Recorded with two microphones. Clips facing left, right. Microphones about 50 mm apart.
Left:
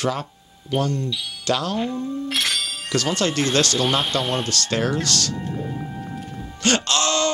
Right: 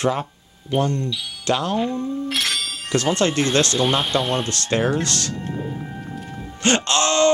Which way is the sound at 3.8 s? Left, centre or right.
Centre.